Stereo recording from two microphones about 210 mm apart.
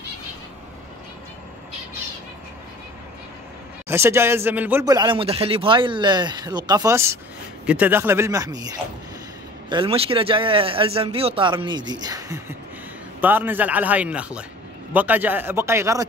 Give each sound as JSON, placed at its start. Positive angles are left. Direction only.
{"t": 3.9, "sound": "a man's voice", "side_deg": -10}
{"t": 9.7, "sound": "a man's voice", "side_deg": -25}